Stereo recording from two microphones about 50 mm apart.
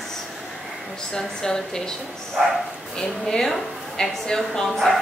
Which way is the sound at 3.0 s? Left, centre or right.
Centre.